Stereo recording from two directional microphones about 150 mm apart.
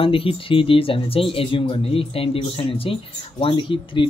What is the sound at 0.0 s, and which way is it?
Speech, 40° left (ahead or behind).